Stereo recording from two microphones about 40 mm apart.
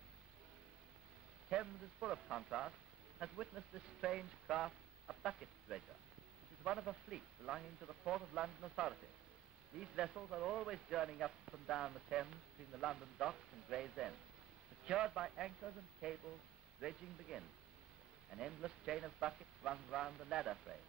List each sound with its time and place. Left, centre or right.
1.5 s speech: right